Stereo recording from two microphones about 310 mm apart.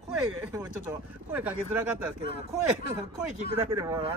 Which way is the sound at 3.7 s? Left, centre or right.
Centre.